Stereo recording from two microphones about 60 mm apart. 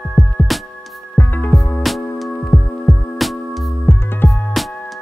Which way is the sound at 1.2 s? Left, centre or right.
Left.